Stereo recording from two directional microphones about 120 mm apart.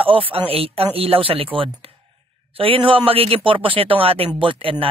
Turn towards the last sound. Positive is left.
turn(degrees=-50)  # may be behind; listen again after turning